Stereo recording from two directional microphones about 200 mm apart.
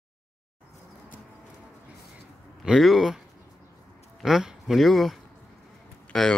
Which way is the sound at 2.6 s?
Centre (ahead or behind).